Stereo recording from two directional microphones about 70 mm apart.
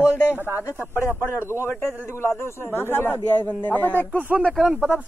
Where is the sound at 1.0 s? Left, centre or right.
Left.